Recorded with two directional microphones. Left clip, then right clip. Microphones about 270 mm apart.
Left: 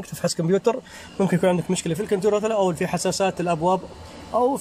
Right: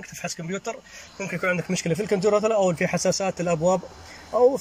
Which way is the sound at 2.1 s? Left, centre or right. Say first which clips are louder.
Even; centre.